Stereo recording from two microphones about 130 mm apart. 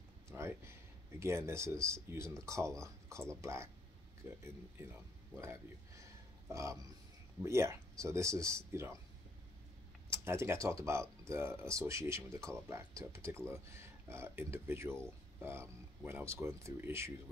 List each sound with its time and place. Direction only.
0.3 s a sound: 20° right (ahead or behind)
1.2 s speech: 20° right (ahead or behind)
10.0 s speech: 20° right (ahead or behind)